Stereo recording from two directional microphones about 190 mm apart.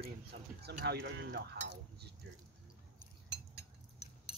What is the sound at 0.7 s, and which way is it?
Cutlery, 60° right (ahead or behind).